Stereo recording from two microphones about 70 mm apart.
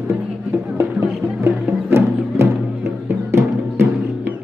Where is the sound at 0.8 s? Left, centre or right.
Right.